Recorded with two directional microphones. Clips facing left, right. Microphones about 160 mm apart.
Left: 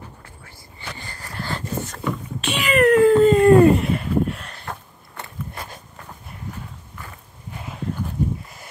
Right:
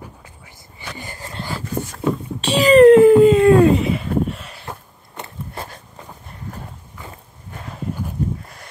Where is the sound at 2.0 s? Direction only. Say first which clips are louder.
Right 7 dB; 35° right (ahead or behind).